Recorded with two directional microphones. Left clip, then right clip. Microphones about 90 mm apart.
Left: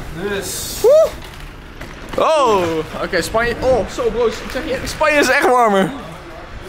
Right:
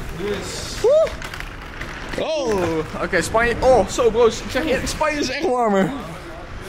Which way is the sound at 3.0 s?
5° left (ahead or behind).